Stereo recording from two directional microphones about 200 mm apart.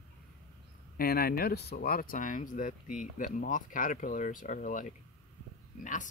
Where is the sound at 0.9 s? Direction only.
50° left (ahead or behind).